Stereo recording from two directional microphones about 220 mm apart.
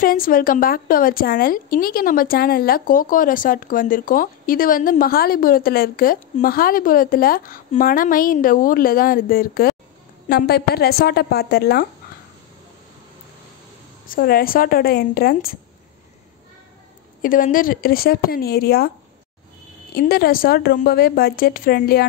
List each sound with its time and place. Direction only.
0.0 s a woman's voice: 40° left (ahead or behind)
14.0 s speech: 40° left (ahead or behind)
17.2 s speech: 40° left (ahead or behind)
20.0 s speech: 45° left (ahead or behind)